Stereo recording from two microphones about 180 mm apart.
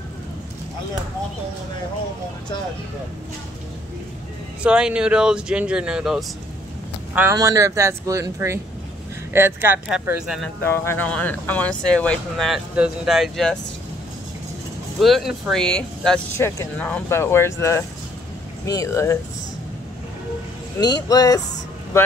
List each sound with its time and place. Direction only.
4.6 s speech: 5° right (ahead or behind)
7.2 s speech: 15° right (ahead or behind)
10.7 s speech: 15° left (ahead or behind)
15.0 s speech: centre (ahead or behind); by 19.1 s 15° left (ahead or behind)
20.8 s speech: 20° left (ahead or behind)